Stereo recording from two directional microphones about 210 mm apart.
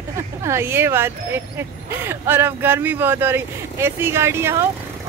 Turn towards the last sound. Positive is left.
turn(degrees=-10)  # may be behind; listen again after turning